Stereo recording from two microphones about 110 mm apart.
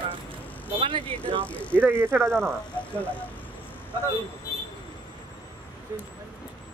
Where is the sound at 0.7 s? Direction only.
50° right (ahead or behind).